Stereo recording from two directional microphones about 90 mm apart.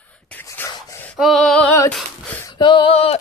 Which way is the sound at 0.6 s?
40° left (ahead or behind).